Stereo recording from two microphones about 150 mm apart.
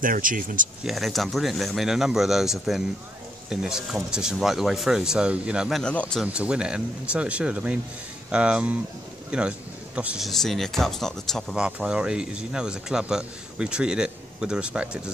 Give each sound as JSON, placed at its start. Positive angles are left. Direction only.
{"t": 0.0, "sound": "speech", "side_deg": -65}
{"t": 0.8, "sound": "speech", "side_deg": 0}
{"t": 6.2, "sound": "speech", "side_deg": -10}